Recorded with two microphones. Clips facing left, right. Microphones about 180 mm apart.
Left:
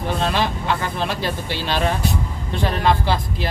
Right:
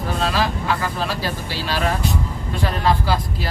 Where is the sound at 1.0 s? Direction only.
25° left (ahead or behind).